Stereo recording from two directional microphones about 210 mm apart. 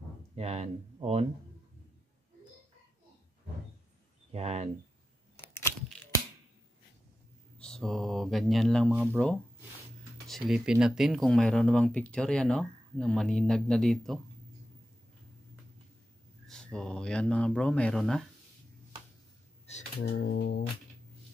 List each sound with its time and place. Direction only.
0.4 s speech: 30° right (ahead or behind)
4.3 s speech: 30° right (ahead or behind)
7.5 s speech: 5° left (ahead or behind)
16.4 s speech: 5° left (ahead or behind)
20.0 s a sound: 50° left (ahead or behind)